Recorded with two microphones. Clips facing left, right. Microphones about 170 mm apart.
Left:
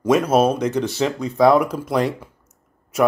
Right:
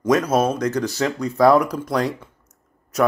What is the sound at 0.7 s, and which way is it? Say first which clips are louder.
Speech: left 1 dB; 25° left (ahead or behind).